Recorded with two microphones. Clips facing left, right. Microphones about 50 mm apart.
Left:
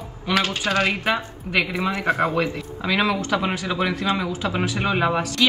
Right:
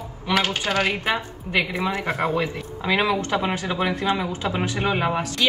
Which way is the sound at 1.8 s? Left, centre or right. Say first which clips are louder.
Left 1 dB; left.